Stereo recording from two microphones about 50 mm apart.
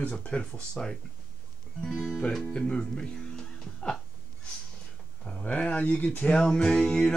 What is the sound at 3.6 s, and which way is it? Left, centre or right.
Music, centre.